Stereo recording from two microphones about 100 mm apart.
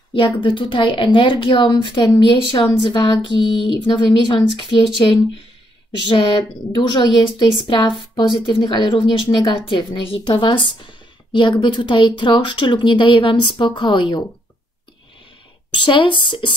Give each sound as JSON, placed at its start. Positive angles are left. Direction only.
{"t": 0.1, "sound": "a woman's voice", "side_deg": 55}
{"t": 6.0, "sound": "a woman's voice", "side_deg": 50}
{"t": 15.7, "sound": "a woman's voice", "side_deg": 55}